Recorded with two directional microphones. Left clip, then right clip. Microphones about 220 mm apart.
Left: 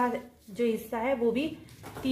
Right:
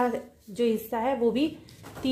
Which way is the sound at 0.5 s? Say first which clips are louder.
Right 3 dB; 35° right (ahead or behind).